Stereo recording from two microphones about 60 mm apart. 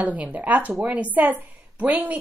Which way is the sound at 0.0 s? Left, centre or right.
Right.